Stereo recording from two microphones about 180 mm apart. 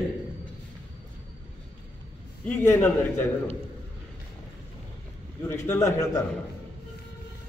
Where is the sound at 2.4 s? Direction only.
10° left (ahead or behind).